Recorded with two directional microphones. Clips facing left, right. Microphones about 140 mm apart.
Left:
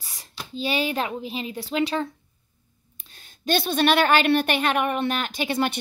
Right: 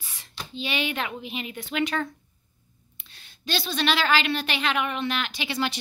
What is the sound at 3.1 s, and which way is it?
A woman's voice, 45° left (ahead or behind).